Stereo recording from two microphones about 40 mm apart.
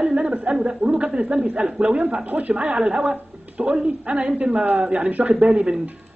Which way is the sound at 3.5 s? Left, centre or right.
Right.